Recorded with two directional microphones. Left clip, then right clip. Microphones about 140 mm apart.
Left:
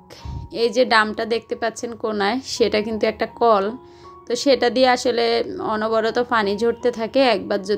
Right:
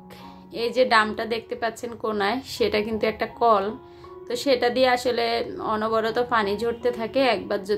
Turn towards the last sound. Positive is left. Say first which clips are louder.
# left 4 dB
turn(degrees=45)  # may be behind; listen again after turning